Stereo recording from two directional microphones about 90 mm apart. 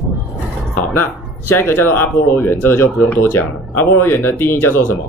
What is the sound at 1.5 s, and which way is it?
Speech, 25° left (ahead or behind).